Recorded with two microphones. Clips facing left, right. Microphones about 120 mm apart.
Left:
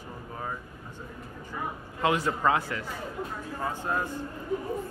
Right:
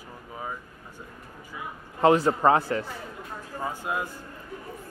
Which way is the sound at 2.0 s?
35° right (ahead or behind).